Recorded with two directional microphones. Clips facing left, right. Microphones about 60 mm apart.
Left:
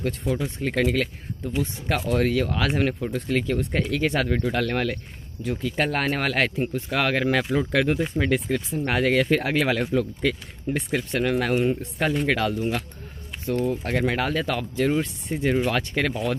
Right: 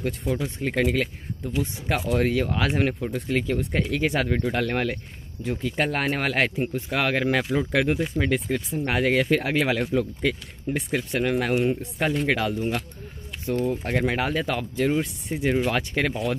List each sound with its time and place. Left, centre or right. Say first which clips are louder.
0.2 s speech: left 1 dB; centre; by 5.8 s right
5.8 s speech: left 1 dB; centre
8.0 s speech: left 1 dB; centre
9.3 s speech: even; centre
13.7 s speech: even; centre
14.8 s speech: left 1 dB; centre
15.7 s speech: even; centre